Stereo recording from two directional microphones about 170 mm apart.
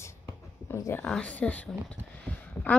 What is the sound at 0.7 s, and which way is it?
Speech, 15° left (ahead or behind).